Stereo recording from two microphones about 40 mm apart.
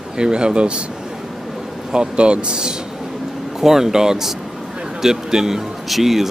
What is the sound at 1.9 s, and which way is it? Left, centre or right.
Speech, right.